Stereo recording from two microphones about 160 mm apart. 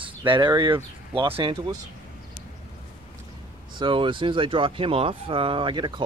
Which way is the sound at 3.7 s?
30° right (ahead or behind).